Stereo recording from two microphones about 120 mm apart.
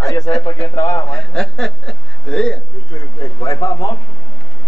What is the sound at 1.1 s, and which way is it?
A man's voice, 5° left (ahead or behind).